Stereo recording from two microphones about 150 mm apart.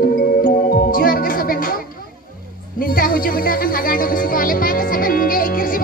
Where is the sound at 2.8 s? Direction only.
70° left (ahead or behind).